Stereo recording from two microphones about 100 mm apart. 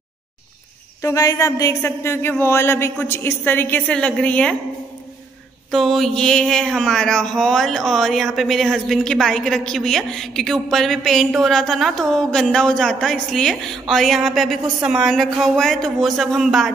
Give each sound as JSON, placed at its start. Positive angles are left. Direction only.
{"t": 1.0, "sound": "a sound", "side_deg": 35}
{"t": 1.8, "sound": "speech", "side_deg": 25}
{"t": 3.9, "sound": "a woman's voice", "side_deg": 10}
{"t": 5.7, "sound": "speech", "side_deg": 0}